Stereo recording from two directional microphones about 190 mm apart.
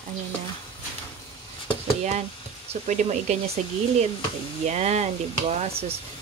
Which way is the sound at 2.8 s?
40° right (ahead or behind).